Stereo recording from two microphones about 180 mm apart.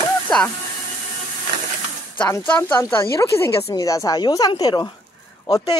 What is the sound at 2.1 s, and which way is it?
Speech, 5° left (ahead or behind).